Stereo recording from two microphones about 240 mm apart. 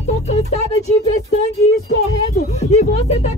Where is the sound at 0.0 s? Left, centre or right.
Left.